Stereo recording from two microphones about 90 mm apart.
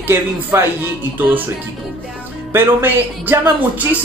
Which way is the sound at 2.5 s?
25° right (ahead or behind).